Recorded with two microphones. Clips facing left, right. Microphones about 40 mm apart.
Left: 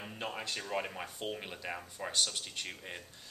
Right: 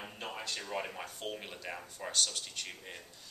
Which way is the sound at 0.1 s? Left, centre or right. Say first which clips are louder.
Left 4 dB; centre.